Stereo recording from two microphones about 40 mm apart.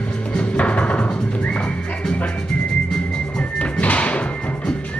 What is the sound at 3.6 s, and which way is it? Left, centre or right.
Music, left.